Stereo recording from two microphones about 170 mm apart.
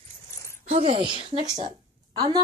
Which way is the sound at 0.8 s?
35° right (ahead or behind).